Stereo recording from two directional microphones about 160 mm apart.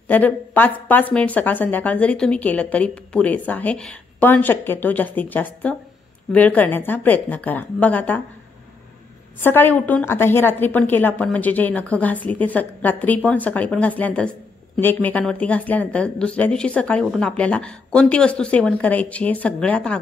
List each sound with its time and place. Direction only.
0.1 s a woman's voice: 10° left (ahead or behind)
9.4 s a woman's voice: 15° left (ahead or behind)